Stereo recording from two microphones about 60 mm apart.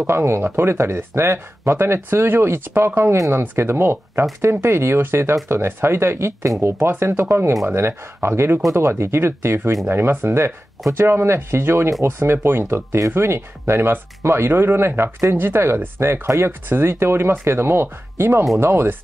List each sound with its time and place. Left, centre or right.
0.0 s speech: right